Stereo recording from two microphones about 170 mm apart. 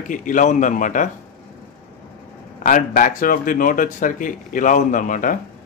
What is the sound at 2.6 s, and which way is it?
Speech, 50° left (ahead or behind).